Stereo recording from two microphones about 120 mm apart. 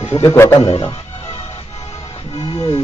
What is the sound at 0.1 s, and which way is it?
Speech, 25° left (ahead or behind).